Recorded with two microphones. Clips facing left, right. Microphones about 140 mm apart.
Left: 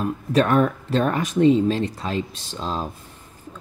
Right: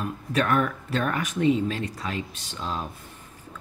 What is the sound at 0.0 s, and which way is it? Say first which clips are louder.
Speech: left 6 dB; 30° left (ahead or behind).